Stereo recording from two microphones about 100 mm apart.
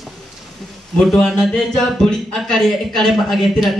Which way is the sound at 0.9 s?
Centre (ahead or behind).